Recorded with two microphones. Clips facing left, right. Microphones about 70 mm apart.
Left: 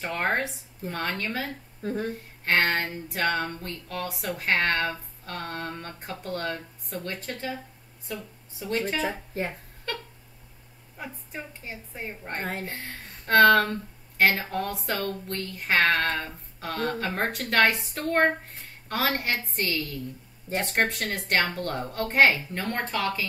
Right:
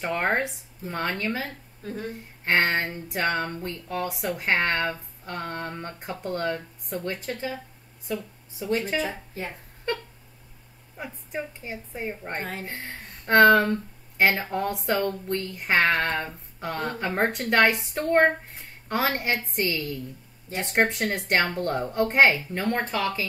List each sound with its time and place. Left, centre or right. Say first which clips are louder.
0.0 s a woman's voice: right 2 dB; centre
1.8 s speech: left 4 dB; left
2.4 s a woman's voice: right 1 dB; centre
11.0 s a woman's voice: right 4 dB; centre
20.6 s a woman's voice: right 4 dB; centre